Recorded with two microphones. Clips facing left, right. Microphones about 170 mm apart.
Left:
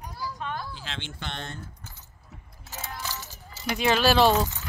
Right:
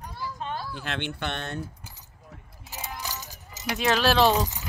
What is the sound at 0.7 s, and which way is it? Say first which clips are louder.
Speech: right 6 dB; 60° right (ahead or behind).